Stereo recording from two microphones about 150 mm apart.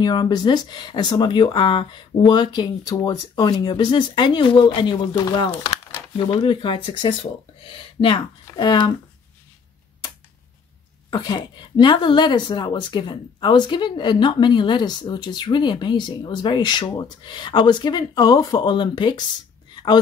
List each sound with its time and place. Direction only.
0.0 s a woman's voice: 30° left (ahead or behind)
11.1 s a woman's voice: 30° left (ahead or behind)
19.7 s a sound: 30° left (ahead or behind)